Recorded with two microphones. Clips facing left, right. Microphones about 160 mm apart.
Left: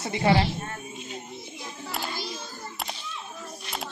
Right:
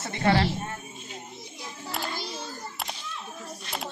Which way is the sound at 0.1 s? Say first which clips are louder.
Left 1 dB; 15° left (ahead or behind).